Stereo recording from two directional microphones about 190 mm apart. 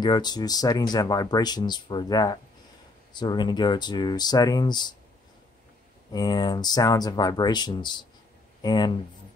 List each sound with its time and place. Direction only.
0.0 s speech: 20° left (ahead or behind)
6.1 s speech: 20° left (ahead or behind)